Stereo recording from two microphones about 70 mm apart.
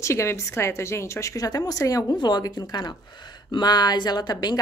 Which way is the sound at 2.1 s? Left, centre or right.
Left.